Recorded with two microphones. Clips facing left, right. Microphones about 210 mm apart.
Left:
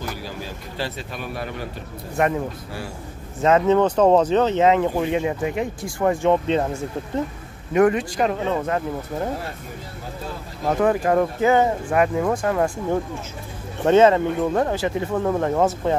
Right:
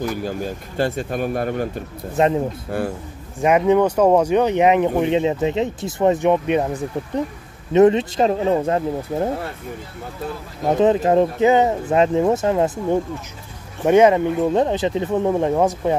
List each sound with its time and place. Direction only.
0.1 s speech: 50° right (ahead or behind)
2.1 s speech: 25° right (ahead or behind)
2.7 s speech: 55° right (ahead or behind)
3.3 s speech: 15° right (ahead or behind)
10.7 s speech: 20° right (ahead or behind)